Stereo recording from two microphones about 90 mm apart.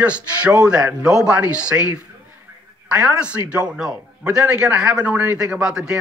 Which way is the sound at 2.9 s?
10° right (ahead or behind).